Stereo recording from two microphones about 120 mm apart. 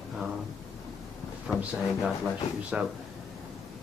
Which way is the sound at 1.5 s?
5° right (ahead or behind).